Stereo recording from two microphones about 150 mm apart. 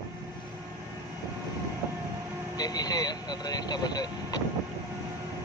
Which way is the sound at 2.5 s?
25° left (ahead or behind).